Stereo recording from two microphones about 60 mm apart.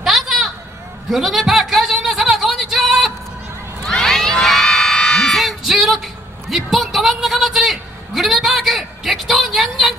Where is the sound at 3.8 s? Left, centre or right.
Centre.